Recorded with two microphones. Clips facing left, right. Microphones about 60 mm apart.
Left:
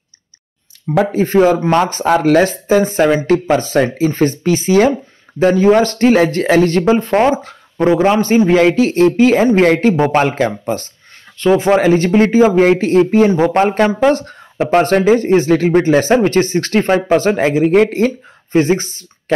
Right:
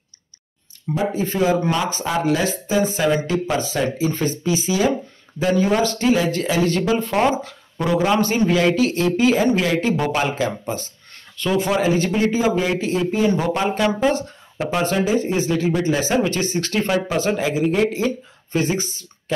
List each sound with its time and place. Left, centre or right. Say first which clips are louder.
1.1 s speech: left 8 dB; left
5.4 s speech: left 8 dB; left
9.9 s speech: left 8 dB; left
10.2 s speech: left 6 dB; left
11.3 s speech: left 8 dB; left